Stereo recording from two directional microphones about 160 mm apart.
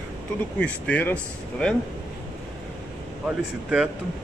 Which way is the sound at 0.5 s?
10° left (ahead or behind).